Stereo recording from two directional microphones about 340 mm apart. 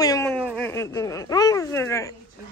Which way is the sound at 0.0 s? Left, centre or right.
Centre.